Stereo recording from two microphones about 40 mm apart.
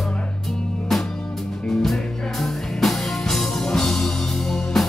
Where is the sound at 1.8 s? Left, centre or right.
Centre.